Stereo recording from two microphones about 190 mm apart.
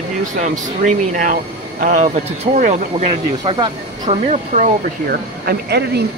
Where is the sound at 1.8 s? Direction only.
40° right (ahead or behind).